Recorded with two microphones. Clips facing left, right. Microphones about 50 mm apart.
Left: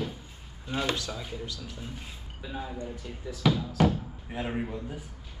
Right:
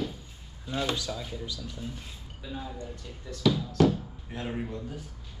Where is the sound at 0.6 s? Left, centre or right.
Centre.